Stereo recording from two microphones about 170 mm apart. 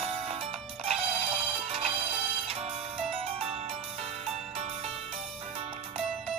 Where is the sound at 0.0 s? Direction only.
35° right (ahead or behind).